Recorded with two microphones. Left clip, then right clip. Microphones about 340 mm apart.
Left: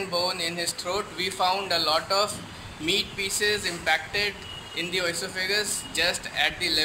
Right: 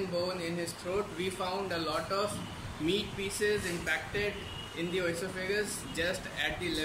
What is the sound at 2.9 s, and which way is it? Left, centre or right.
Speech, left.